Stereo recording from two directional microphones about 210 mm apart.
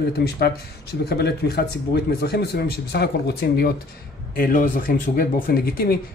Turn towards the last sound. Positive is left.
turn(degrees=45)  # may be behind; listen again after turning